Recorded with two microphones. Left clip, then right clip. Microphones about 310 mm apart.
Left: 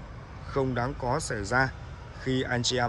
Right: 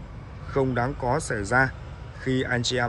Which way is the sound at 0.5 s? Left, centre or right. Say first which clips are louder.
Right 4 dB; centre.